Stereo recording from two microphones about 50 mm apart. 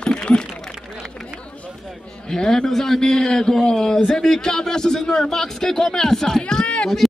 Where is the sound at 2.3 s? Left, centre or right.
Centre.